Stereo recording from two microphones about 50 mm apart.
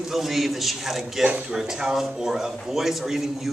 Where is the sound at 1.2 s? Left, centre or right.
Right.